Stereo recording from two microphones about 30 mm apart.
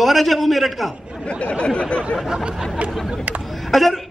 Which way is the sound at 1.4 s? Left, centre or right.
Left.